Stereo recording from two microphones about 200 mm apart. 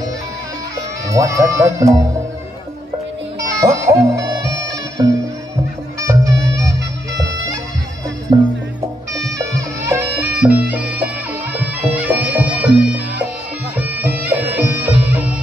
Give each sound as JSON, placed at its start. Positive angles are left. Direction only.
{"t": 1.1, "sound": "speech", "side_deg": -15}
{"t": 3.3, "sound": "music", "side_deg": -15}
{"t": 5.9, "sound": "music", "side_deg": -15}
{"t": 8.3, "sound": "music", "side_deg": -25}
{"t": 9.4, "sound": "bagpipes", "side_deg": -15}